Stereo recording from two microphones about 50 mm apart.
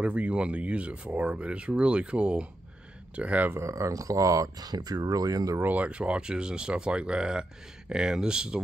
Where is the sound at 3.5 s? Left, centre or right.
Right.